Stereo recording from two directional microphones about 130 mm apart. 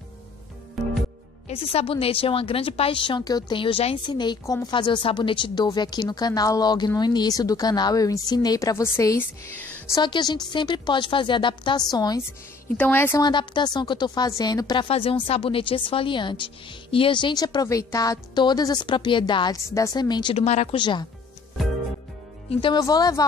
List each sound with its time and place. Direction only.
0.8 s music: centre (ahead or behind)
1.5 s a woman's voice: 45° left (ahead or behind); by 9.1 s 20° left (ahead or behind)
10.0 s speech: 35° left (ahead or behind)
12.7 s a woman's voice: 15° left (ahead or behind)
13.2 s speech: 35° left (ahead or behind)
14.9 s speech: 45° left (ahead or behind)
20.3 s speech: 55° left (ahead or behind)
20.7 s speech: 35° left (ahead or behind)
22.6 s a woman's voice: 35° left (ahead or behind)